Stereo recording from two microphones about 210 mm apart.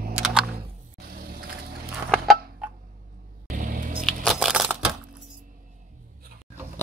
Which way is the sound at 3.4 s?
40° right (ahead or behind).